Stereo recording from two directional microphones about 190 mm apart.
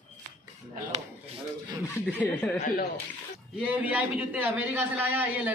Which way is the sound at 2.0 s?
5° left (ahead or behind).